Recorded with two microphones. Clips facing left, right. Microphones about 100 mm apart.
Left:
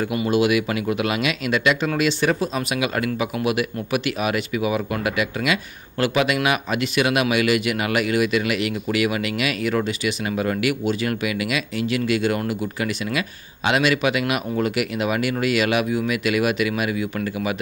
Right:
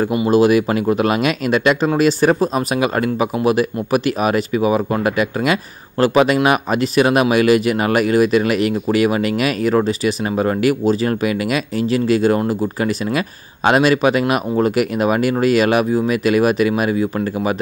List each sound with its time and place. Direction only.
0.3 s speech: 40° right (ahead or behind)